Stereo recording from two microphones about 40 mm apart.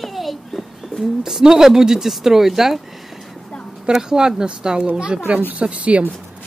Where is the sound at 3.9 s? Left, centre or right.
Centre.